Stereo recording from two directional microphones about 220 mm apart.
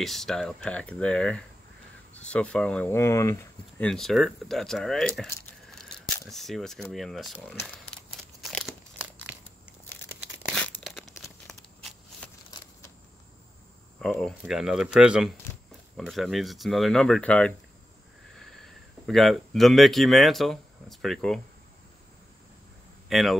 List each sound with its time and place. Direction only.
0.0 s speech: centre (ahead or behind)
10.4 s tearing: centre (ahead or behind)
14.0 s speech: 5° left (ahead or behind)
23.0 s speech: centre (ahead or behind)